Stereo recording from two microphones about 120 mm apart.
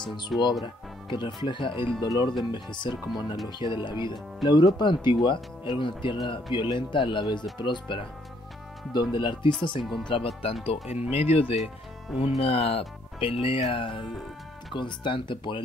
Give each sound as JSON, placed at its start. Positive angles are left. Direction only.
{"t": 0.3, "sound": "speech", "side_deg": 0}
{"t": 1.0, "sound": "speech", "side_deg": 40}
{"t": 4.4, "sound": "speech", "side_deg": 0}
{"t": 4.7, "sound": "speech", "side_deg": 40}